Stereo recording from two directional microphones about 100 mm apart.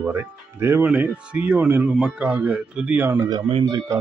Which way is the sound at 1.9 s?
5° right (ahead or behind).